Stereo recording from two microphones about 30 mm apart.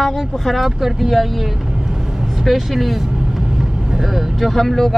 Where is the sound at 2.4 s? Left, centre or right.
Centre.